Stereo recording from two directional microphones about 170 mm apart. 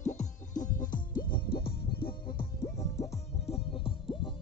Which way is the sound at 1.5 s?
65° left (ahead or behind).